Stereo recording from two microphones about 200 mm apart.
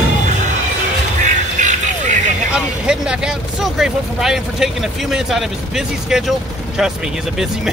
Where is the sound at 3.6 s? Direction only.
Centre (ahead or behind).